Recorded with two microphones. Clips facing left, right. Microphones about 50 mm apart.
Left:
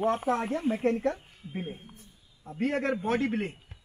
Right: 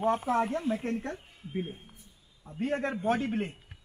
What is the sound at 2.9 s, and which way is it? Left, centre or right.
Speech, left.